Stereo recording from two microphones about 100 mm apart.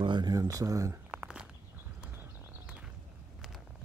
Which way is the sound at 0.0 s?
50° right (ahead or behind).